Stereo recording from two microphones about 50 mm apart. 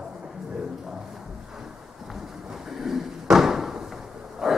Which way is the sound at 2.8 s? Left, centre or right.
Centre.